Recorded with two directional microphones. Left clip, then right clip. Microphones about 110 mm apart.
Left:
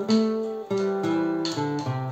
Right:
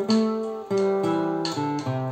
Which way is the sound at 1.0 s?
25° right (ahead or behind).